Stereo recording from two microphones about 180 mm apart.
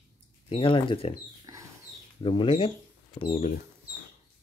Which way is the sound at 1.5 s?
20° right (ahead or behind).